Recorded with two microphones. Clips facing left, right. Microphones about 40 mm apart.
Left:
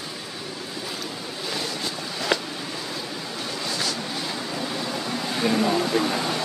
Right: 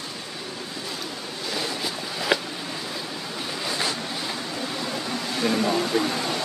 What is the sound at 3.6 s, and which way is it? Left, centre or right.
Vehicle, centre.